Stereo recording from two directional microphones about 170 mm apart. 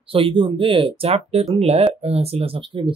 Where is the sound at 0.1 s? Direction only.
30° right (ahead or behind).